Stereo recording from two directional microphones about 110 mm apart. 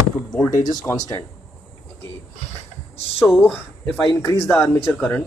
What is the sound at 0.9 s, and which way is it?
Speech, 30° left (ahead or behind).